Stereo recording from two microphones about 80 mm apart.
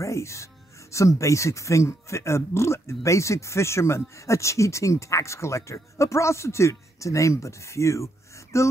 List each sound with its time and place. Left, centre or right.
0.0 s speech: left